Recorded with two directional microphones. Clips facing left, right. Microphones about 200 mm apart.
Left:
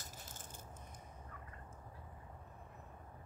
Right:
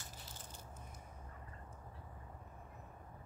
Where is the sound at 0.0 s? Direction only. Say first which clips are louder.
Even; 50° left (ahead or behind).